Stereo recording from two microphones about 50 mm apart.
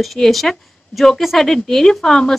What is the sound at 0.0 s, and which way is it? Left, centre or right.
A woman's voice, centre.